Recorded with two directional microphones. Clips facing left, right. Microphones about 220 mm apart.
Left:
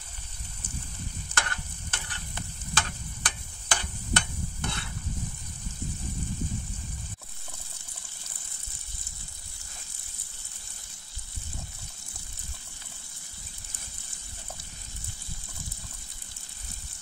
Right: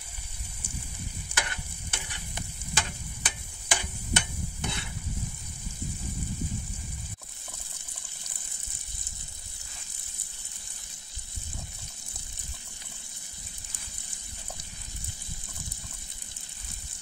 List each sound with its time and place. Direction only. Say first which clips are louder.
1.3 s stir: left 1 dB; 10° right (ahead or behind)